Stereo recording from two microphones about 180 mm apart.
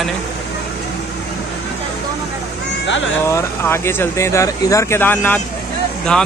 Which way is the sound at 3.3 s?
15° left (ahead or behind).